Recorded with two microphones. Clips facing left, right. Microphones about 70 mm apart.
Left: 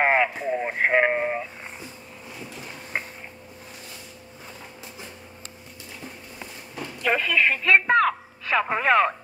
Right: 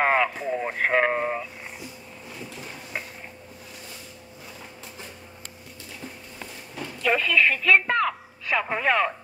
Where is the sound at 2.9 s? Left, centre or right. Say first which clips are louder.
Left 4 dB; left.